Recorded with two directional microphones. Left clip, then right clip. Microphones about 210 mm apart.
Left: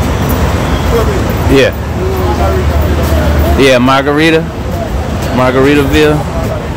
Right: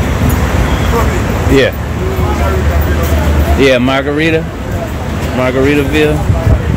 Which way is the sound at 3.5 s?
15° left (ahead or behind).